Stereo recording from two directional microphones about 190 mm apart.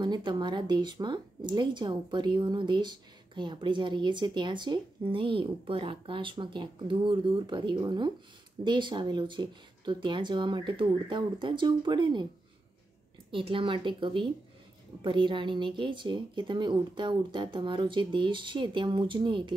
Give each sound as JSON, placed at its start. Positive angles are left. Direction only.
{"t": 0.0, "sound": "speech", "side_deg": -25}
{"t": 13.3, "sound": "speech", "side_deg": -25}